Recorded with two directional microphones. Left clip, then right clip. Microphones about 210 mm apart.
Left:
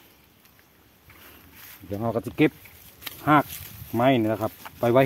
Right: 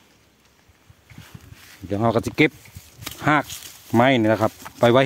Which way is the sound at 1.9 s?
40° right (ahead or behind).